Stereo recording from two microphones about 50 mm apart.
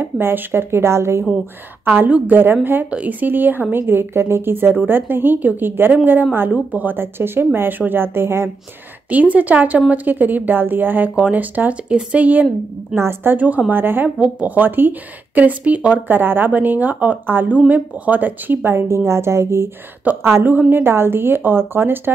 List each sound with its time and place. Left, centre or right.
0.0 s a woman's voice: right
1.9 s a woman's voice: right
2.3 s a woman's voice: right
6.5 s a woman's voice: right
7.0 s a woman's voice: right
9.1 s a woman's voice: right
11.1 s a woman's voice: right
12.9 s speech: right
13.4 s a woman's voice: right
16.1 s a woman's voice: right
19.0 s speech: right
20.1 s a woman's voice: right